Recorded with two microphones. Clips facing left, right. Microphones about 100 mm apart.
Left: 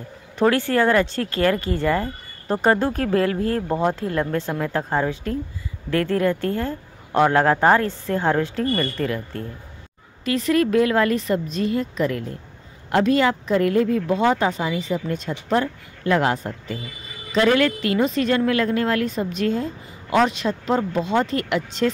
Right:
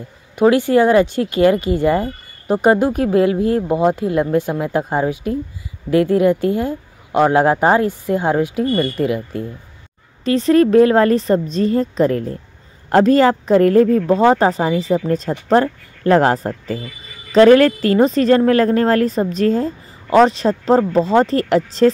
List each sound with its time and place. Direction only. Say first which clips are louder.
0.4 s speech: right 6 dB; 15° right (ahead or behind)
10.2 s a woman's voice: right 7 dB; 30° right (ahead or behind)